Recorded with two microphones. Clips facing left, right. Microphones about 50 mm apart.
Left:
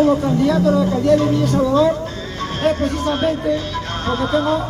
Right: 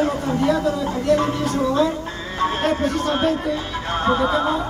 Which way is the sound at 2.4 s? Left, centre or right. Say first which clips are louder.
Left 1 dB; centre.